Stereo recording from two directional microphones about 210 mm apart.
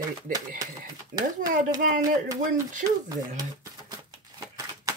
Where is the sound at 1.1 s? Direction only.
60° right (ahead or behind).